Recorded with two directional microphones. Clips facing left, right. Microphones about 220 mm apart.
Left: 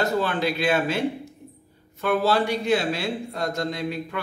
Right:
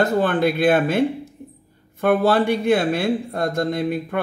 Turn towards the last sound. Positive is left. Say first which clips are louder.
# right 6 dB
turn(degrees=-55)  # may be behind; listen again after turning